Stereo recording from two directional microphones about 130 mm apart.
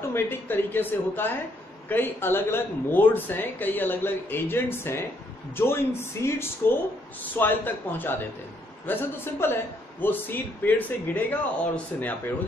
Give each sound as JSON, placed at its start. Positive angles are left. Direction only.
{"t": 0.1, "sound": "a man's voice", "side_deg": 15}
{"t": 6.2, "sound": "a man's voice", "side_deg": 25}